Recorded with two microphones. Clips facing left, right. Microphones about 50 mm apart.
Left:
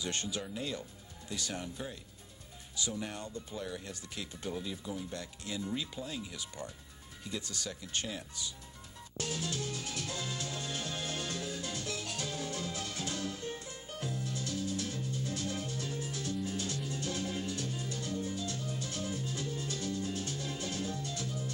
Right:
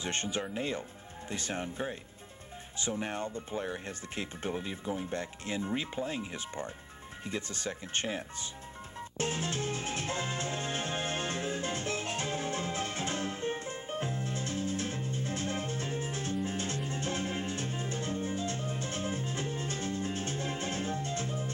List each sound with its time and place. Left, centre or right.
0.0 s speech: right
9.2 s music: right